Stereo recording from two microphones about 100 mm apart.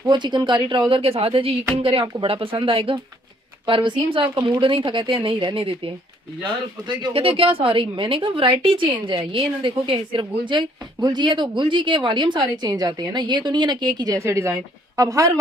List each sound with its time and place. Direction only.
0.0 s a woman's voice: 50° right (ahead or behind)
6.9 s a woman's voice: 50° right (ahead or behind)
7.2 s a woman's voice: 65° right (ahead or behind); by 15.3 s 35° right (ahead or behind)